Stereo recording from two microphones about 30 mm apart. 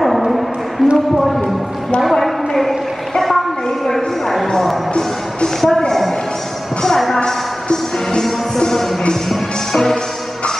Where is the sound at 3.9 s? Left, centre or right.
Centre.